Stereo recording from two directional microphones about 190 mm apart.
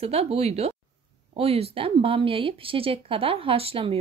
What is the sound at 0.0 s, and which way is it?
Speech, 30° right (ahead or behind).